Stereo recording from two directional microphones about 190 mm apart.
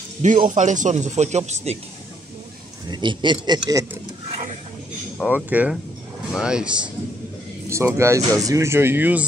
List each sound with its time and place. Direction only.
0.2 s speech: 40° right (ahead or behind)
2.9 s a man's voice: 25° right (ahead or behind)
5.1 s speech: 5° right (ahead or behind)